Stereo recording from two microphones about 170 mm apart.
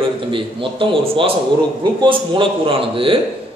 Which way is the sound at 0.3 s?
30° right (ahead or behind).